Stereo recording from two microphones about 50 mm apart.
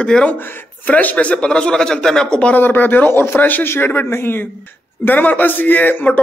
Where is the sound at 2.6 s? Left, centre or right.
Left.